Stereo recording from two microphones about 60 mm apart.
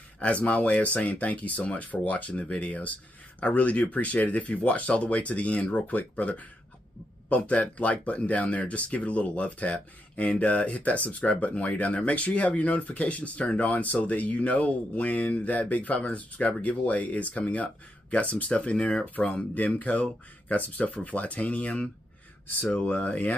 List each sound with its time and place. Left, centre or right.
0.2 s speech: left